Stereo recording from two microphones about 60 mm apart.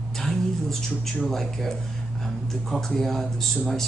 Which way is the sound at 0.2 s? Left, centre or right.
Centre.